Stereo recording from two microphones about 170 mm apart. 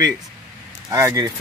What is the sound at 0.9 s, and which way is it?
Speech, 20° right (ahead or behind).